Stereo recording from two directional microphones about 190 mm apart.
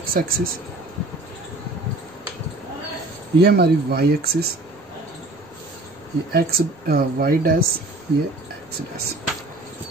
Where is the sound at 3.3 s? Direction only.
55° right (ahead or behind).